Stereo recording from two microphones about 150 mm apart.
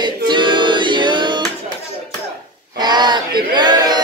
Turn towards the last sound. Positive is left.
turn(degrees=-30)  # may be behind; listen again after turning